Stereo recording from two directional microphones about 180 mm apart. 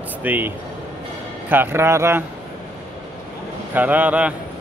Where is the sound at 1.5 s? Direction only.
15° right (ahead or behind).